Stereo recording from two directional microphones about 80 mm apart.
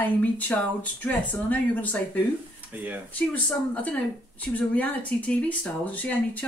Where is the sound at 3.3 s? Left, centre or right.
Centre.